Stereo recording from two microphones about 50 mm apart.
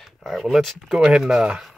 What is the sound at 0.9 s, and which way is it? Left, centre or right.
Speech, centre.